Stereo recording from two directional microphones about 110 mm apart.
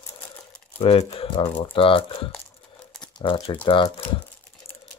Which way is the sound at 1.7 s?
55° left (ahead or behind).